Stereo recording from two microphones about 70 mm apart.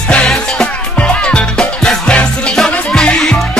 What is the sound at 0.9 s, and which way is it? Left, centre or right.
Music, centre.